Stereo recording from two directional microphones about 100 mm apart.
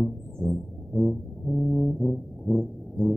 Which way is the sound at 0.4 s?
5° right (ahead or behind).